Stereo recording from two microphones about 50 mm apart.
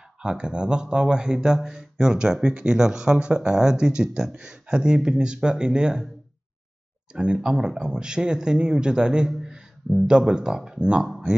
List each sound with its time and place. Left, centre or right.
0.2 s speech: centre
7.1 s speech: centre